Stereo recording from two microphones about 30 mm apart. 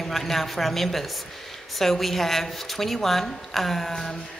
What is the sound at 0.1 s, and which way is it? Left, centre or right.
A woman's voice, centre.